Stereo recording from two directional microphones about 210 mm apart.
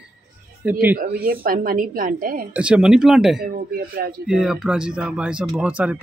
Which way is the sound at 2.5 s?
5° right (ahead or behind).